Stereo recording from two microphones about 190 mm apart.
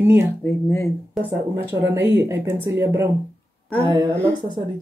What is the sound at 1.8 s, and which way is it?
Speech, 15° right (ahead or behind).